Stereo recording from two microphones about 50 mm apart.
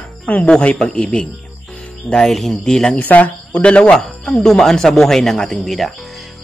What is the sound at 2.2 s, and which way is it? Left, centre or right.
Speech, centre.